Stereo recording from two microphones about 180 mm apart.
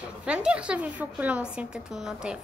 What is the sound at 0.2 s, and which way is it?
A woman's voice, 5° right (ahead or behind).